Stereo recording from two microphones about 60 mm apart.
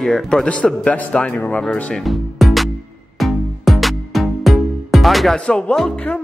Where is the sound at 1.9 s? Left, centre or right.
Centre.